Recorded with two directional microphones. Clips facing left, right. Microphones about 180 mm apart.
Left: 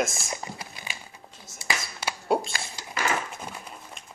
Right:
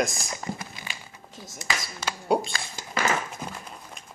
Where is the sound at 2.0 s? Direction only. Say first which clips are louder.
Right 1 dB; centre (ahead or behind).